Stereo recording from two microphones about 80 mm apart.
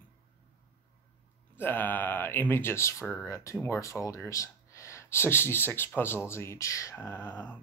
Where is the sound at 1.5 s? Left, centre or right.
Left.